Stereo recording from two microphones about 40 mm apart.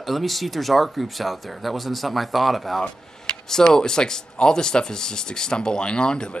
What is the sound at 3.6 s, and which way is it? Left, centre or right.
Speech, centre.